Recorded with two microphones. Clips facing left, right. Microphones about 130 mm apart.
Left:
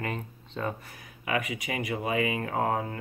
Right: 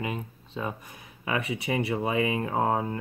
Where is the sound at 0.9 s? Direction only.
30° right (ahead or behind).